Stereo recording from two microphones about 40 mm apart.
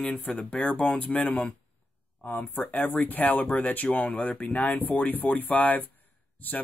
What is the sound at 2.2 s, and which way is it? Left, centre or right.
Speech, left.